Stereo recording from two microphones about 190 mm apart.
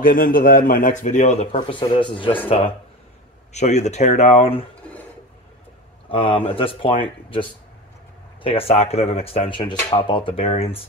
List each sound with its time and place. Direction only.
0.0 s a man's voice: 45° left (ahead or behind); by 2.3 s 25° left (ahead or behind)
3.5 s a man's voice: 35° left (ahead or behind)
6.0 s speech: 25° left (ahead or behind)